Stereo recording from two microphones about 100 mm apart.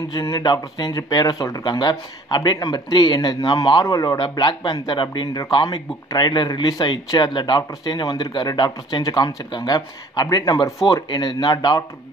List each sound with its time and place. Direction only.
0.1 s speech: 50° left (ahead or behind)
3.8 s a man's voice: 35° left (ahead or behind)
4.2 s speech: 50° left (ahead or behind)